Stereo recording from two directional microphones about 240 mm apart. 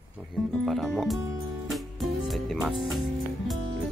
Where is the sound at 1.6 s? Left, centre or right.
Centre.